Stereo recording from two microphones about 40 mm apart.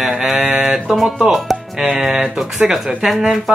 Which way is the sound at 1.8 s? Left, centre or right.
Centre.